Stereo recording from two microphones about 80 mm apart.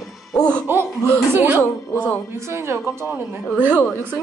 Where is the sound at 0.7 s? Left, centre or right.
Right.